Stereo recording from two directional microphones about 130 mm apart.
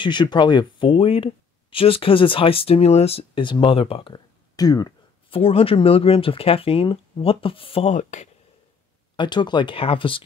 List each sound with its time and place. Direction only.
0.0 s speech: 35° left (ahead or behind)
5.3 s speech: 50° left (ahead or behind)
7.9 s speech: 65° left (ahead or behind)
9.1 s speech: 35° left (ahead or behind)